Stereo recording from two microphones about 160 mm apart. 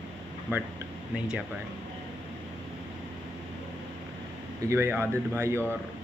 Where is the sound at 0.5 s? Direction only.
10° right (ahead or behind).